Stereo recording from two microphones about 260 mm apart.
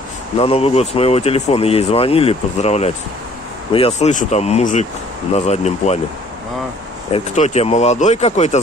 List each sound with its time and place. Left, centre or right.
0.4 s speech: left
7.1 s speech: left